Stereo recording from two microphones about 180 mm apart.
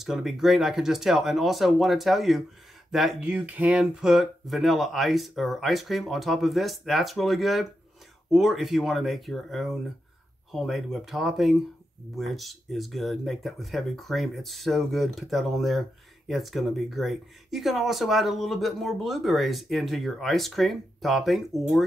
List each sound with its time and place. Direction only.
0.0 s speech: centre (ahead or behind)